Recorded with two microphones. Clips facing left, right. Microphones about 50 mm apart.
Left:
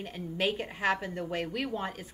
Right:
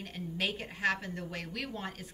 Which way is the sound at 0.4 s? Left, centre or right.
Centre.